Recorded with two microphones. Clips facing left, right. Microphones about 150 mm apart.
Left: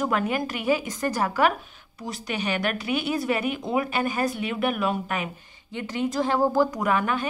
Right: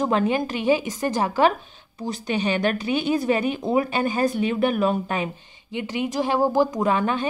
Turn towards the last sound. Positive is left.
turn(degrees=-25)  # may be behind; listen again after turning